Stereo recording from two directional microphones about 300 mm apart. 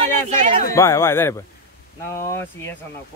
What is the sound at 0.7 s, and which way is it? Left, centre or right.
Speech, centre.